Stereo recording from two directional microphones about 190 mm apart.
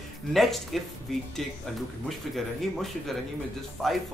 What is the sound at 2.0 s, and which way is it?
Speech, centre (ahead or behind).